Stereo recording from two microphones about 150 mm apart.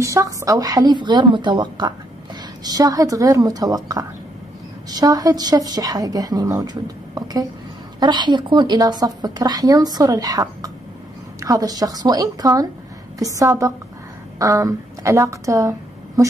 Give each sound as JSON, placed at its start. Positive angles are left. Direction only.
{"t": 0.0, "sound": "a woman's voice", "side_deg": -20}